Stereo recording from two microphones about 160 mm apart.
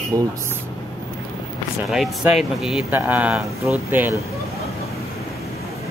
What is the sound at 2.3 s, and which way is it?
A man's voice, 5° right (ahead or behind).